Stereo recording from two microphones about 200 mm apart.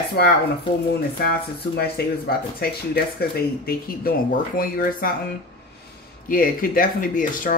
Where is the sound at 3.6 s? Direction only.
45° left (ahead or behind).